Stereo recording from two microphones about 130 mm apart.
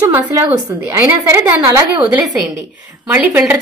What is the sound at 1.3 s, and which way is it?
A woman's voice, 15° right (ahead or behind).